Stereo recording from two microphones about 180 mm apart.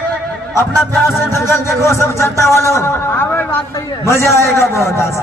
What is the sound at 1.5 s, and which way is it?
A man's voice, 15° left (ahead or behind).